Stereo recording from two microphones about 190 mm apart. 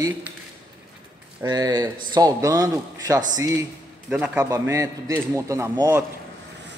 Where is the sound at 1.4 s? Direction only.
20° right (ahead or behind).